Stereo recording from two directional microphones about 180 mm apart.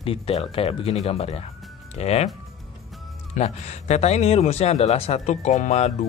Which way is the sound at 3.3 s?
35° left (ahead or behind).